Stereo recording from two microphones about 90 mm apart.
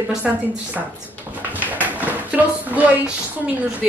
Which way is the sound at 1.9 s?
20° right (ahead or behind).